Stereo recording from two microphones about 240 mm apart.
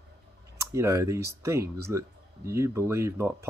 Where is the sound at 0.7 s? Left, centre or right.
Centre.